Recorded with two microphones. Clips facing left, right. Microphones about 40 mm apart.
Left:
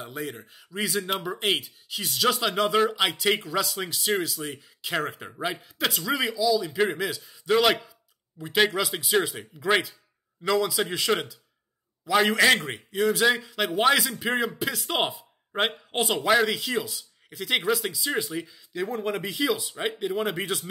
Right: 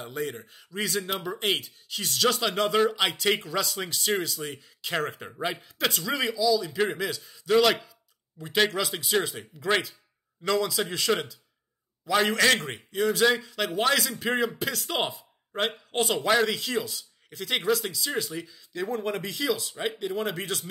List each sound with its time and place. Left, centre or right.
0.0 s speech: centre
14.1 s speech: centre